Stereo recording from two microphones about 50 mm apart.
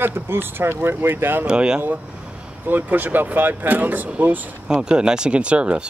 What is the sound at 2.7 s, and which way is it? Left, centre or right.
Speech, right.